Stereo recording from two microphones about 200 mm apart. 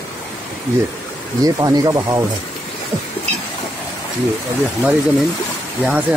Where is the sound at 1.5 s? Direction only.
20° right (ahead or behind).